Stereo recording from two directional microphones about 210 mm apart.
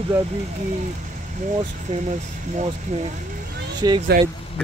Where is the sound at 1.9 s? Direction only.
30° right (ahead or behind).